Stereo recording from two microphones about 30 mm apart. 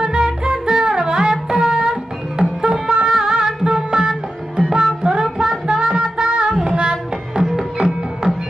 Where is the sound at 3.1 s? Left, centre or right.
Centre.